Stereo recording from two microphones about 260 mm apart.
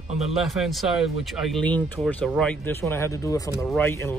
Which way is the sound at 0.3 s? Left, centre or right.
Centre.